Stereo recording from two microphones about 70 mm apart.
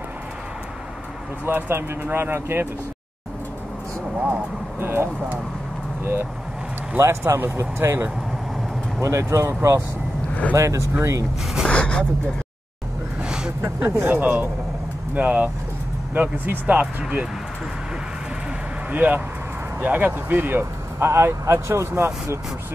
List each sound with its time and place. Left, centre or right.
1.4 s speech: right
4.7 s speech: right
7.0 s speech: right
11.6 s speech: centre
13.2 s a sound: centre
13.6 s speech: right
18.9 s speech: right